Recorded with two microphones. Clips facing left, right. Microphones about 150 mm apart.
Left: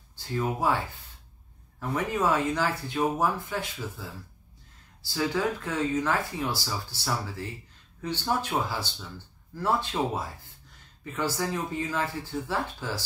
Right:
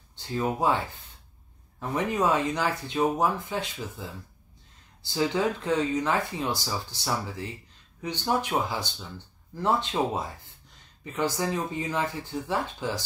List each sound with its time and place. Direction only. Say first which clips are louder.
0.1 s speech: right 1 dB; 20° right (ahead or behind)